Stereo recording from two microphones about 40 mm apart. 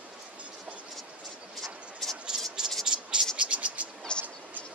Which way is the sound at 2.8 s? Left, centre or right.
Right.